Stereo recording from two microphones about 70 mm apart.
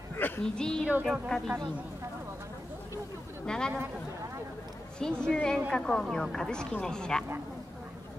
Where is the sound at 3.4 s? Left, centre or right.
Centre.